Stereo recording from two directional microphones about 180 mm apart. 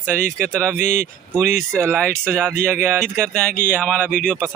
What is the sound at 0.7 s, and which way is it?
Speech, 55° right (ahead or behind).